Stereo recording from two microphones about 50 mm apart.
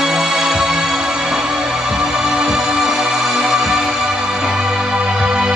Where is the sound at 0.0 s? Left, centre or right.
Centre.